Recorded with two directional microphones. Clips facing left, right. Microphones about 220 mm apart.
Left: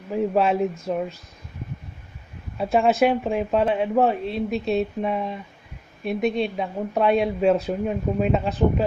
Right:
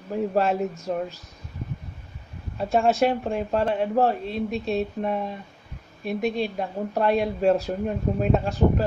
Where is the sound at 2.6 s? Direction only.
Centre (ahead or behind).